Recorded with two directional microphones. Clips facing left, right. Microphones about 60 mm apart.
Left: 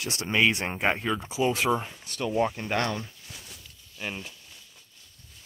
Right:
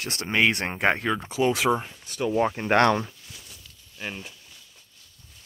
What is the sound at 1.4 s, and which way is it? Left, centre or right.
Speech, right.